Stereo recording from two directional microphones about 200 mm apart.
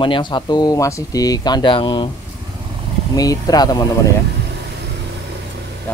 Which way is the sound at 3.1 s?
20° left (ahead or behind).